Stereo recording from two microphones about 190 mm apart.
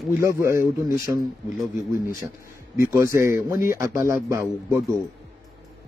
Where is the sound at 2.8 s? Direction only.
15° right (ahead or behind).